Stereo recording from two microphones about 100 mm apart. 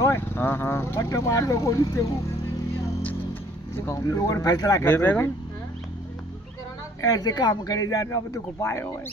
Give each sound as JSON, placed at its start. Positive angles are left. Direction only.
{"t": 0.0, "sound": "speech", "side_deg": 25}
{"t": 3.8, "sound": "speech", "side_deg": 30}
{"t": 4.8, "sound": "speech", "side_deg": 20}
{"t": 7.0, "sound": "speech", "side_deg": 40}